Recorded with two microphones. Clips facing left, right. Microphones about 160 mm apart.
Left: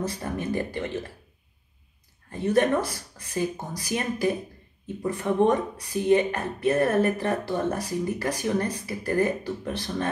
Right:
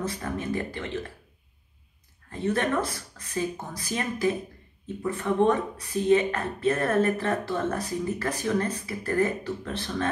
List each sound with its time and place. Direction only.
0.1 s speech: 20° left (ahead or behind)
2.3 s speech: 15° left (ahead or behind)